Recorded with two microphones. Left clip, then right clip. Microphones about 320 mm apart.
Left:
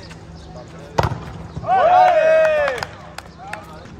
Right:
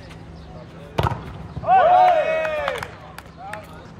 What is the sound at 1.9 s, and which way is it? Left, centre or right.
Run, left.